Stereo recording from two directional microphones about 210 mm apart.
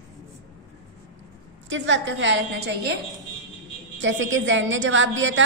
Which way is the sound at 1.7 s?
60° right (ahead or behind).